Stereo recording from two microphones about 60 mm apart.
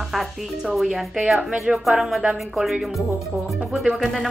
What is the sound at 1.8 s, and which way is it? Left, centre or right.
Speech, centre.